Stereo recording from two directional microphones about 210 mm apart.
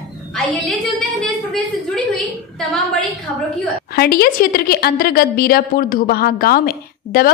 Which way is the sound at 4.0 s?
45° left (ahead or behind).